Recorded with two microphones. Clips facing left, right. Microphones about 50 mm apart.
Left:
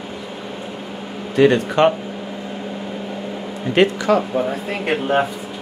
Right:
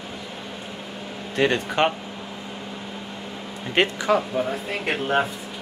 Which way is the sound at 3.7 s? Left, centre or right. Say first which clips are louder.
Left 6 dB; centre.